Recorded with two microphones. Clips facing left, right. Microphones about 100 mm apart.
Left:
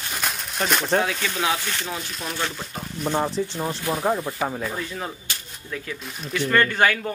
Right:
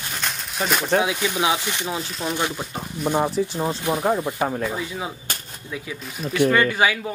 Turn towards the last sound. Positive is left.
turn(degrees=-5)  # may be behind; listen again after turning